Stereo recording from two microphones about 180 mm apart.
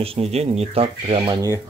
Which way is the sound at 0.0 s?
35° right (ahead or behind).